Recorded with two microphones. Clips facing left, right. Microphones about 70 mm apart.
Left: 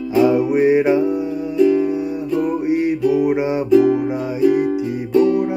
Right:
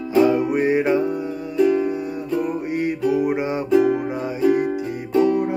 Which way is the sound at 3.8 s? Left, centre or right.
Centre.